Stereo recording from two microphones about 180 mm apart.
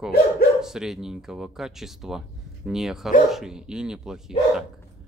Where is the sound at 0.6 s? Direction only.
Centre (ahead or behind).